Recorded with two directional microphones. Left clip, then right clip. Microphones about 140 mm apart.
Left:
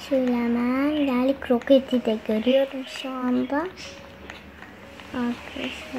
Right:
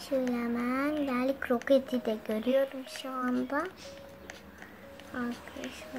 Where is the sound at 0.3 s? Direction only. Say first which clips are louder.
Left 8 dB; 25° left (ahead or behind).